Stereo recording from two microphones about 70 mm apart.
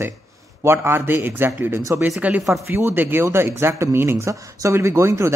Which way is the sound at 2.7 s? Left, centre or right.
Right.